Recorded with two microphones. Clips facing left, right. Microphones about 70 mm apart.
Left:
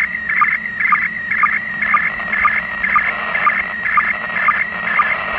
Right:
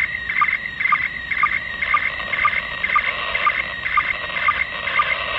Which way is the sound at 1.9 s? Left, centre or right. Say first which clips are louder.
Left 4 dB; left.